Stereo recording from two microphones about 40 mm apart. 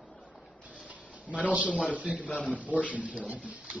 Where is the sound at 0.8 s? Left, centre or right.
Right.